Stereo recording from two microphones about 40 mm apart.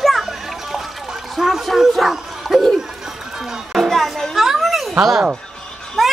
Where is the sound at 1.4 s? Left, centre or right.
Centre.